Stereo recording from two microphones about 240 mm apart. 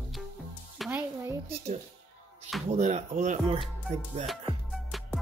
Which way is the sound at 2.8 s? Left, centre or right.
Right.